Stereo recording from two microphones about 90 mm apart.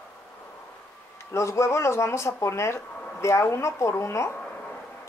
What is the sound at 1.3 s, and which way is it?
A woman's voice, 35° left (ahead or behind).